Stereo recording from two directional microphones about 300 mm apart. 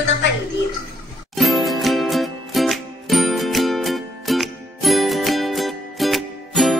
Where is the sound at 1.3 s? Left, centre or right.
Centre.